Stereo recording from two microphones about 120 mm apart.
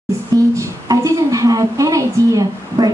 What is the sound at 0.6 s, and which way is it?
A woman's voice, 25° right (ahead or behind).